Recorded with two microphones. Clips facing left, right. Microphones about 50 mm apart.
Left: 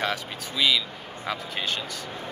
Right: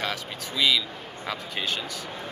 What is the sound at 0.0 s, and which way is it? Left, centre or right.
Speech, centre.